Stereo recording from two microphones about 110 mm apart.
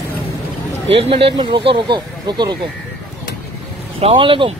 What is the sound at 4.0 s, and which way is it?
Speech, 55° right (ahead or behind).